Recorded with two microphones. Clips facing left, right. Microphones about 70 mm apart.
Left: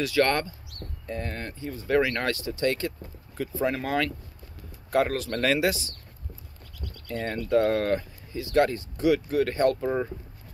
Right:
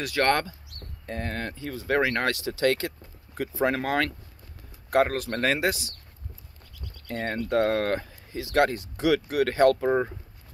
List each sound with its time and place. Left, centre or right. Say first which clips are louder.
0.0 s speech: even; right
1.4 s speech: right 2 dB; right
2.4 s speech: right 2 dB; right
5.3 s speech: left 1 dB; right
7.1 s speech: left 1 dB; right
8.3 s speech: even; right
8.7 s speech: even; right
9.8 s speech: right 3 dB; right